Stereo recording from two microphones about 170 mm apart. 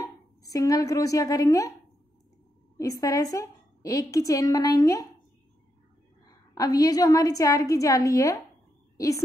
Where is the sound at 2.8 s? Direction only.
20° left (ahead or behind).